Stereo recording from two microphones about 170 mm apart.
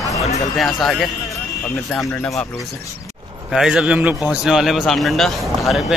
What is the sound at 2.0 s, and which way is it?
Speech, centre (ahead or behind).